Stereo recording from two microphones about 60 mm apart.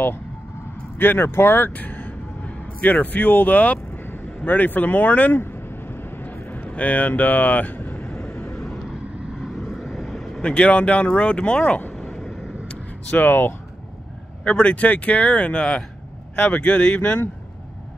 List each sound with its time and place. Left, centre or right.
0.9 s speech: left
5.4 s a sound: left
8.0 s vehicle: centre
9.4 s vehicle: centre
10.4 s speech: centre
11.9 s vehicle: centre
12.6 s a sound: left
14.4 s speech: centre